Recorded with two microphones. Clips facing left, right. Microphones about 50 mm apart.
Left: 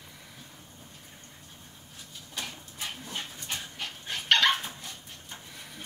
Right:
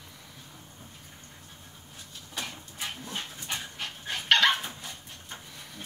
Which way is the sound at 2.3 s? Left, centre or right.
Centre.